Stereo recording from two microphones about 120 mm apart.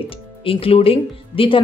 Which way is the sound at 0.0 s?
50° left (ahead or behind).